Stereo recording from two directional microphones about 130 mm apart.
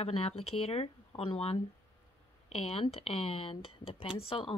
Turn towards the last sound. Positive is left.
turn(degrees=40)  # may be behind; listen again after turning